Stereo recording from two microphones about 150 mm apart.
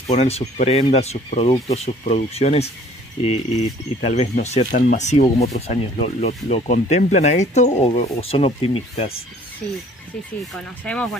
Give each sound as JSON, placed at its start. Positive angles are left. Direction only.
{"t": 0.0, "sound": "speech", "side_deg": 45}
{"t": 4.6, "sound": "speech", "side_deg": 65}
{"t": 9.6, "sound": "speech", "side_deg": 5}
{"t": 10.8, "sound": "speech", "side_deg": 10}